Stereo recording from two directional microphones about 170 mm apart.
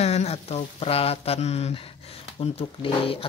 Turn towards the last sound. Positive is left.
turn(degrees=30)  # may be behind; listen again after turning